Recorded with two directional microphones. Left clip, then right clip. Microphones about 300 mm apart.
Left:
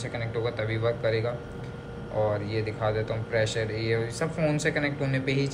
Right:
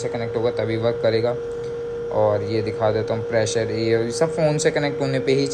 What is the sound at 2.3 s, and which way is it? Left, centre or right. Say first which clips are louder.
Speech: right 8 dB; right.